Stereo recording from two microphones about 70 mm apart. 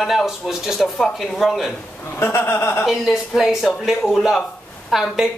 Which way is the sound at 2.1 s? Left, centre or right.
Left.